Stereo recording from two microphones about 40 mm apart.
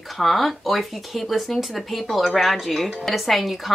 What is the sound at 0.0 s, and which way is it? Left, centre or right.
A woman's voice, centre.